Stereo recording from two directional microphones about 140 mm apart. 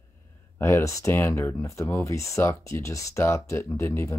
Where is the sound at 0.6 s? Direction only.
15° left (ahead or behind).